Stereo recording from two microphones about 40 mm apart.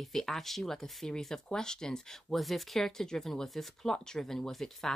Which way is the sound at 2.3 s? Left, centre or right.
Centre.